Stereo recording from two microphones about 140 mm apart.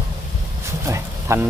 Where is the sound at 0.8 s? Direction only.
20° right (ahead or behind).